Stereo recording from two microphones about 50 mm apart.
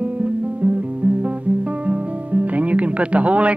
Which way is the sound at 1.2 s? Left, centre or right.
Right.